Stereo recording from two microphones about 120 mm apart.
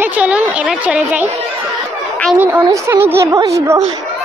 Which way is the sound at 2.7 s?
20° right (ahead or behind).